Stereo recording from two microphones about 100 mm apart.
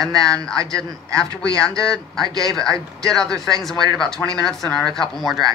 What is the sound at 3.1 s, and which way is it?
Speech, 5° left (ahead or behind).